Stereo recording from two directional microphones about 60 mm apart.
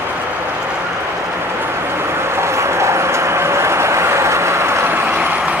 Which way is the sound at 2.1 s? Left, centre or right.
Right.